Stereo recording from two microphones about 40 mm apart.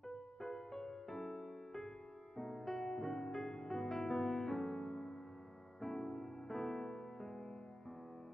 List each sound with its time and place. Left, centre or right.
0.4 s music: centre